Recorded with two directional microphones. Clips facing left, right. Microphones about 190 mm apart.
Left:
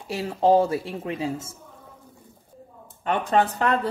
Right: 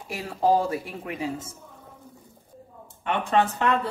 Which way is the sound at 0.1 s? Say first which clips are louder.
Left 3 dB; 25° left (ahead or behind).